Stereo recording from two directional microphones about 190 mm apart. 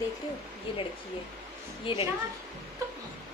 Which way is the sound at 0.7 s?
25° left (ahead or behind).